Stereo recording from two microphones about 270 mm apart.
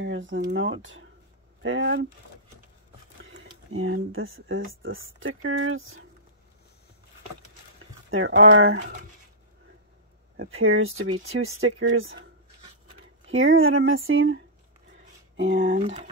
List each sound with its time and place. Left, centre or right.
0.0 s speech: right
3.3 s speech: right
8.1 s speech: right
10.3 s speech: right
13.3 s speech: right
15.7 s speech: right